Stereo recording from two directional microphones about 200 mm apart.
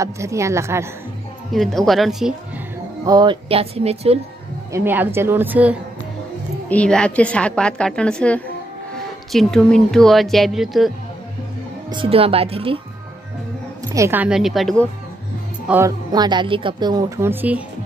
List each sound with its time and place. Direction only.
0.0 s a woman's voice: 15° right (ahead or behind)
1.5 s a woman's voice: centre (ahead or behind)
3.1 s a woman's voice: 20° right (ahead or behind)
4.7 s a woman's voice: 10° right (ahead or behind)
6.7 s a woman's voice: 5° left (ahead or behind)
11.9 s a woman's voice: 25° right (ahead or behind)
13.9 s a woman's voice: 10° right (ahead or behind)
16.1 s a woman's voice: 20° right (ahead or behind)